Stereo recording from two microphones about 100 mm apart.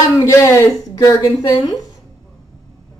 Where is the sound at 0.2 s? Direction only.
30° left (ahead or behind).